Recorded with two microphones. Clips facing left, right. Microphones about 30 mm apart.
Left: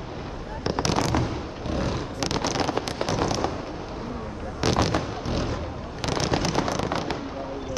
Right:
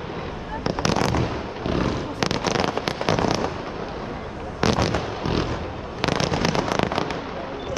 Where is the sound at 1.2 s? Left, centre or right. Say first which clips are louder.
Right 4 dB; right.